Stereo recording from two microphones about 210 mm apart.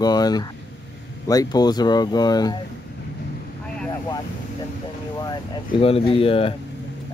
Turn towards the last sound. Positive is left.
turn(degrees=25)  # may be behind; listen again after turning